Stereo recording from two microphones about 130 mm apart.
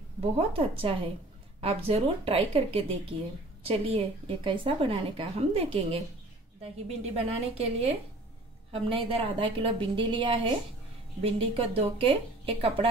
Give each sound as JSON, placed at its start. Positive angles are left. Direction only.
{"t": 0.2, "sound": "a woman's voice", "side_deg": -50}